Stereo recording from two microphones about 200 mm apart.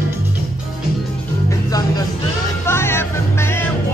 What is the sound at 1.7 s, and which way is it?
Music, 20° left (ahead or behind).